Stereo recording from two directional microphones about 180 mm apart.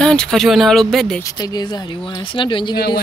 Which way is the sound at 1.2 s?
20° left (ahead or behind).